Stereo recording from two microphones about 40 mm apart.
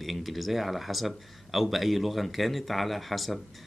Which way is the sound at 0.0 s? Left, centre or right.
Centre.